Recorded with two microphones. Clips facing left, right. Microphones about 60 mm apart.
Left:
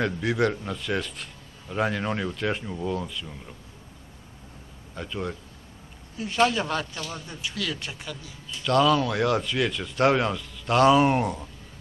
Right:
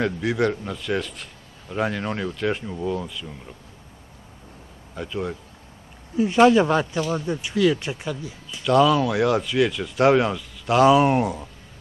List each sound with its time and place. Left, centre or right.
0.0 s speech: centre
4.9 s speech: centre
6.1 s speech: right
8.6 s speech: centre